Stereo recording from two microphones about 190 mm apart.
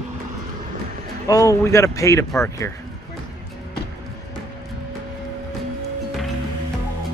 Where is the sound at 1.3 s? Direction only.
15° left (ahead or behind).